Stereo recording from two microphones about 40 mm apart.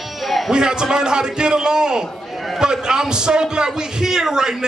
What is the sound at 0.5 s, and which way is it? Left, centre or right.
A man's voice, centre.